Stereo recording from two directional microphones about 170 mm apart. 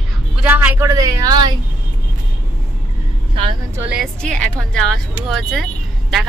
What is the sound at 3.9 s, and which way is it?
Speech, centre (ahead or behind).